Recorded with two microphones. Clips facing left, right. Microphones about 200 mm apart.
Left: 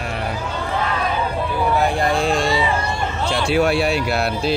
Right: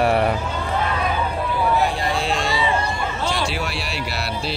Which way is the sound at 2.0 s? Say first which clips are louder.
Left 4 dB; 50° left (ahead or behind).